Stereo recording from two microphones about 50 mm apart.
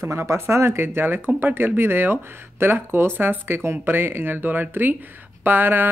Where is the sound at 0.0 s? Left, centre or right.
Right.